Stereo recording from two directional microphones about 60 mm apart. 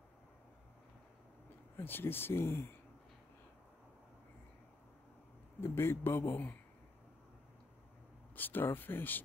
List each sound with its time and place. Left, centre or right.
1.8 s speech: left
5.6 s speech: left
8.4 s speech: left